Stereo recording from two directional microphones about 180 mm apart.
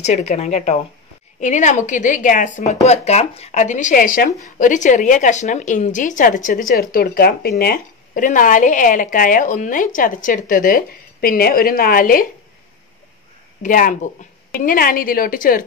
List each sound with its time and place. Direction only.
0.0 s a woman's voice: 40° left (ahead or behind)
13.6 s a woman's voice: 50° left (ahead or behind)